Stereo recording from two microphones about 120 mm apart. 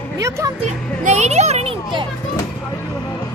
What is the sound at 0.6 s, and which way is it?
A child's voice, 70° right (ahead or behind).